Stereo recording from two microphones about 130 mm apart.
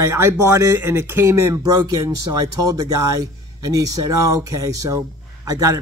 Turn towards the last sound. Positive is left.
turn(degrees=-25)  # may be behind; listen again after turning